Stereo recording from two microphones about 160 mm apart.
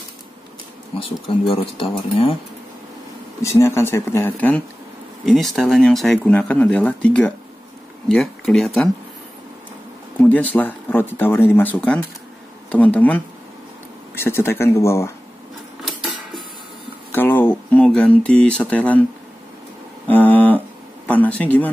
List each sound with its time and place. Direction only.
0.9 s speech: 35° left (ahead or behind)
3.4 s speech: 15° left (ahead or behind)
10.2 s speech: 10° left (ahead or behind)
16.0 s a sound: 5° right (ahead or behind)
17.1 s speech: 10° left (ahead or behind)
20.1 s a sound: 10° left (ahead or behind)
21.1 s speech: 10° left (ahead or behind)